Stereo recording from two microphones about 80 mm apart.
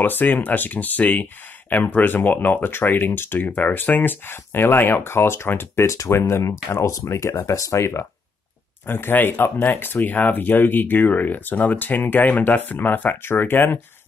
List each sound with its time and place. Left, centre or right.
0.0 s speech: left